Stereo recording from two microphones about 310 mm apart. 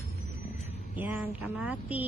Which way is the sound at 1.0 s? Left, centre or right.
Centre.